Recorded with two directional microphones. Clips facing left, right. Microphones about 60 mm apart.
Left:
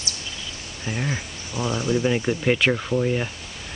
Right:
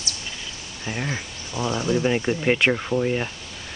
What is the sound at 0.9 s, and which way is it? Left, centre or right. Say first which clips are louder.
Speech: left 1 dB; centre.